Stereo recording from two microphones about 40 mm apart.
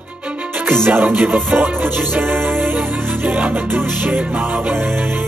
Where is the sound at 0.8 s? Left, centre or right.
Right.